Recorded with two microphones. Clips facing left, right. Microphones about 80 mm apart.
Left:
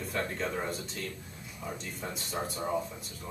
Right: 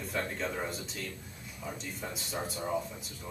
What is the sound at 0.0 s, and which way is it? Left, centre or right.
Speech, centre.